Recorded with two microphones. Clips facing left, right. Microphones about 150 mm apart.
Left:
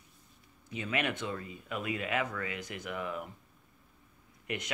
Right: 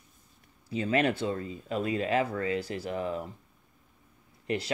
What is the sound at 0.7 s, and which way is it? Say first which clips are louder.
Speech: right 7 dB; 35° right (ahead or behind).